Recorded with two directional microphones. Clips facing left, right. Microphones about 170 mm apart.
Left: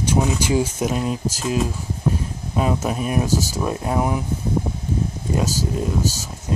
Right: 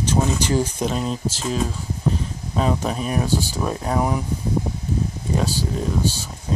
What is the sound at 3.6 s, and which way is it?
Speech, 5° left (ahead or behind).